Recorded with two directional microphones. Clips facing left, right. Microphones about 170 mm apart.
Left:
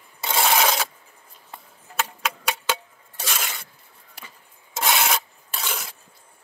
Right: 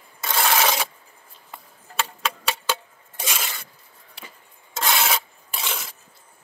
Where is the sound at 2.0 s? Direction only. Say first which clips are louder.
Even; 5° left (ahead or behind).